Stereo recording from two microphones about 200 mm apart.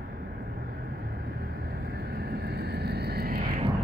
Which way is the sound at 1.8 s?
50° right (ahead or behind).